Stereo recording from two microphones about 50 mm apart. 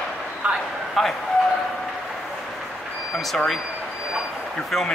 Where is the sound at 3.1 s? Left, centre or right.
Centre.